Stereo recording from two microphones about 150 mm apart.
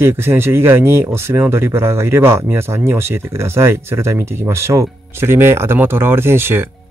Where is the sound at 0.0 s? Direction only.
15° right (ahead or behind).